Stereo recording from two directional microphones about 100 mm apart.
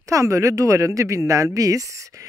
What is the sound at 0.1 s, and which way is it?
Speech, 30° right (ahead or behind).